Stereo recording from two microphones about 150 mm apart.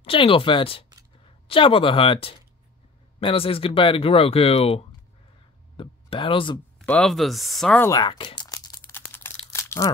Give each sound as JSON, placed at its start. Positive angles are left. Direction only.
{"t": 0.0, "sound": "speech", "side_deg": 35}
{"t": 6.8, "sound": "speech", "side_deg": 5}
{"t": 7.8, "sound": "a sound", "side_deg": 25}
{"t": 9.5, "sound": "crumpling", "side_deg": 20}